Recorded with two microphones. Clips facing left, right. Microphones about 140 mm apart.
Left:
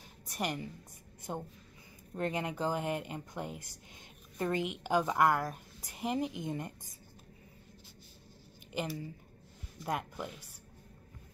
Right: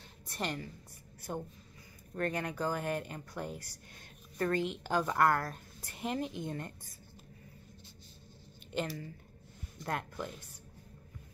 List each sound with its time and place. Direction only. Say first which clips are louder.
0.3 s a woman's voice: left 1 dB; 15° left (ahead or behind)
9.8 s a woman's voice: left 1 dB; 10° left (ahead or behind)